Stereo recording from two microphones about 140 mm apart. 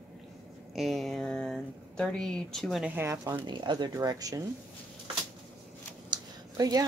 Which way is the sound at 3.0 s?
20° right (ahead or behind).